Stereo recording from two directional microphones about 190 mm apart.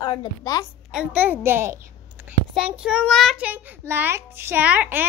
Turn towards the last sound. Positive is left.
turn(degrees=-10)  # may be behind; listen again after turning